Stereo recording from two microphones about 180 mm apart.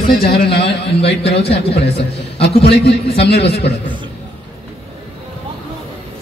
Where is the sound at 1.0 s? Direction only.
35° left (ahead or behind).